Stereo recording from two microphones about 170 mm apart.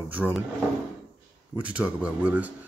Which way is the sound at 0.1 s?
10° right (ahead or behind).